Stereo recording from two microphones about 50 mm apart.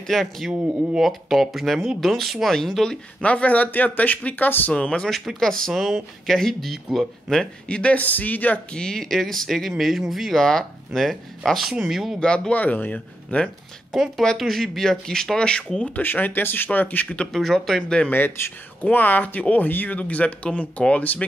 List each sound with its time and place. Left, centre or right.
0.0 s speech: centre
3.2 s speech: left
4.7 s speech: left
5.2 s speech: centre; by 8.0 s left
8.0 s speech: left
8.7 s speech: centre
12.2 s speech: left
12.5 s speech: left
13.9 s speech: centre
16.0 s speech: left
17.3 s speech: centre
17.8 s speech: left
18.1 s speech: left